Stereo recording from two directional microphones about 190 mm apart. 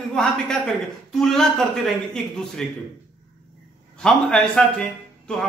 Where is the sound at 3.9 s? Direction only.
5° left (ahead or behind).